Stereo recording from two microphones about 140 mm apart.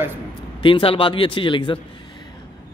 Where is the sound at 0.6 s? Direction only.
40° left (ahead or behind).